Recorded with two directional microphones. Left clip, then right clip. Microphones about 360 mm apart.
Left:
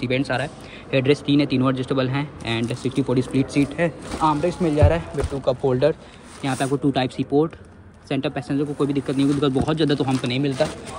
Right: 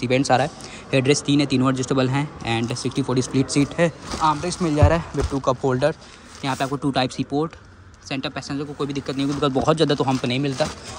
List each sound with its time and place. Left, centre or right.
0.0 s speech: centre
3.3 s speech: right
3.7 s speech: centre